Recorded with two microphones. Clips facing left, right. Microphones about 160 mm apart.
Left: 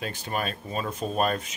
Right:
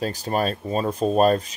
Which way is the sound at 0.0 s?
40° right (ahead or behind).